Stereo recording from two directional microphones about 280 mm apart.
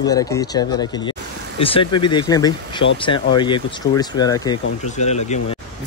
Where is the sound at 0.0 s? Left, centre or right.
Centre.